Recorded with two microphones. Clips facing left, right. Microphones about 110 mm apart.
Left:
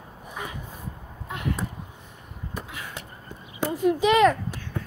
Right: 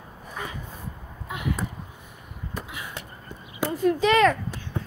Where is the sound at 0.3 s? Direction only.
10° left (ahead or behind).